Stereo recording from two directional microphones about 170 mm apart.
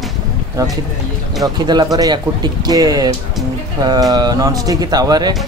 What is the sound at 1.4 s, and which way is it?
Speech, 25° right (ahead or behind).